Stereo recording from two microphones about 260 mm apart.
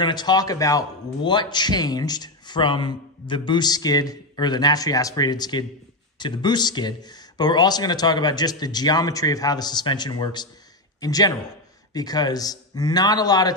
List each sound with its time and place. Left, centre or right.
0.0 s speech: centre